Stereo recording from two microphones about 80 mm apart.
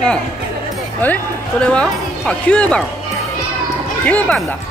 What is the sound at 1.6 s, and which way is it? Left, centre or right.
Speech, centre.